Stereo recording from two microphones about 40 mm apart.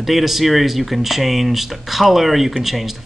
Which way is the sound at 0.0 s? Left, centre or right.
Centre.